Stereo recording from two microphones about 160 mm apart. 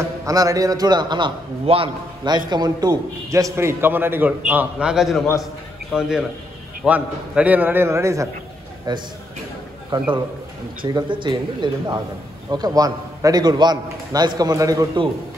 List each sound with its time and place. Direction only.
0.2 s a man's voice: 20° right (ahead or behind)